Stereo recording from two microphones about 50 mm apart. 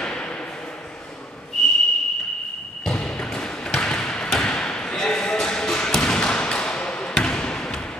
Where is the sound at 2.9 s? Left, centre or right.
Centre.